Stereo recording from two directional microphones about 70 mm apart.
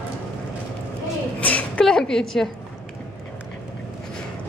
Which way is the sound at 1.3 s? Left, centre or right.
Centre.